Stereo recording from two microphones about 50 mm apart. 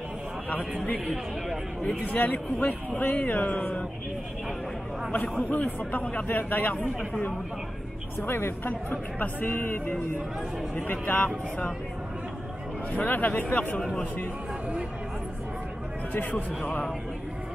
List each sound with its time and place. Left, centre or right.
2.1 s speech: left
5.5 s speech: left
8.2 s speech: left
8.6 s speech: left
12.9 s speech: left
16.1 s speech: left